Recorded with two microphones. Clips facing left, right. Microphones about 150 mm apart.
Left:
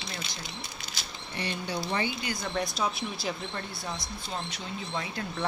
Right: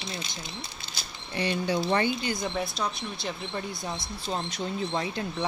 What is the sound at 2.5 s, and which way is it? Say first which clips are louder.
Speech: even; centre (ahead or behind).